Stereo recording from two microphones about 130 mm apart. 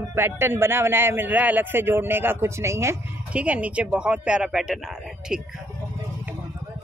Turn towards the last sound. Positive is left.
turn(degrees=-5)  # may be behind; listen again after turning